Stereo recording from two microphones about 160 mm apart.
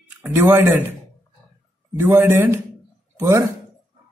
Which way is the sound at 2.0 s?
15° right (ahead or behind).